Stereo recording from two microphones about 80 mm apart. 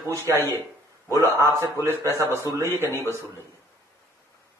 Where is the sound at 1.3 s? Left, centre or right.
Right.